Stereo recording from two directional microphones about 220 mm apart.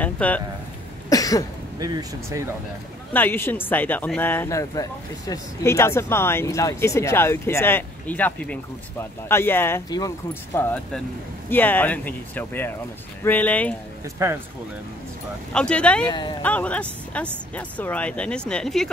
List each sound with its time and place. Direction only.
0.0 s speech: 5° left (ahead or behind)
1.1 s cough: 15° left (ahead or behind)
1.8 s speech: 15° right (ahead or behind)
3.1 s speech: 10° left (ahead or behind)
14.2 s speech: 15° right (ahead or behind)
15.5 s speech: 5° left (ahead or behind)
16.1 s speech: 20° left (ahead or behind)
16.4 s speech: 5° left (ahead or behind)